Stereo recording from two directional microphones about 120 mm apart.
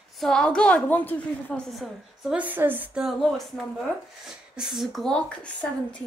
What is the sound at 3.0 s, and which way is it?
A woman's voice, centre (ahead or behind).